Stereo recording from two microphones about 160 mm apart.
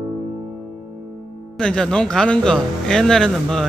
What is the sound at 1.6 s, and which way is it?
Speech, 5° left (ahead or behind).